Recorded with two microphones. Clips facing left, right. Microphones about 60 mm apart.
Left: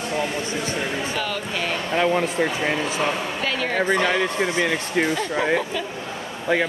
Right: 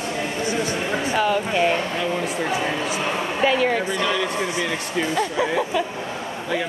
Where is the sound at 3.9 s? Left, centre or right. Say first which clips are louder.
Left 2 dB; left.